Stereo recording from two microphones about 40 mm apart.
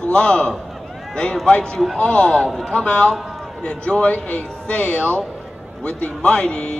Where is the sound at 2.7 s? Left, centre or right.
Left.